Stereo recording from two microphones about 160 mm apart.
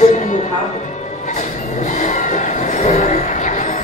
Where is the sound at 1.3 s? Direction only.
50° left (ahead or behind).